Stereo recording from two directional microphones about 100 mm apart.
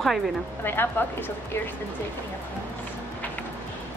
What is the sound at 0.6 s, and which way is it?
Speech, 20° left (ahead or behind).